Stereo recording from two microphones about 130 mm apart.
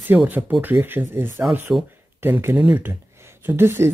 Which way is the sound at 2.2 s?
15° right (ahead or behind).